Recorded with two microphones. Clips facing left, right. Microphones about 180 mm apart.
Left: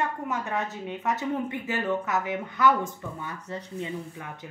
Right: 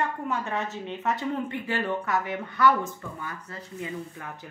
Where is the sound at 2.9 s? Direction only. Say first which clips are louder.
Left 1 dB; 20° left (ahead or behind).